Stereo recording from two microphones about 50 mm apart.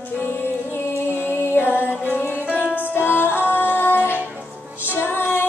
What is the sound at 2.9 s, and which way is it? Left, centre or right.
Music, left.